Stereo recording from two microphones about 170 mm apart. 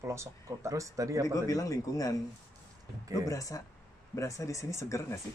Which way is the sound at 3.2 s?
20° left (ahead or behind).